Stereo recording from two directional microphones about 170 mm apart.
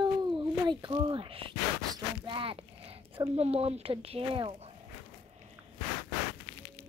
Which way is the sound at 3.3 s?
35° right (ahead or behind).